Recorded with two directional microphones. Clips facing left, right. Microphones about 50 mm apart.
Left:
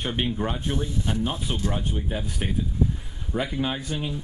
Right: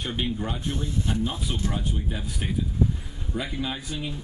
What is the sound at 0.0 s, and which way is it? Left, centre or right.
Speech, left.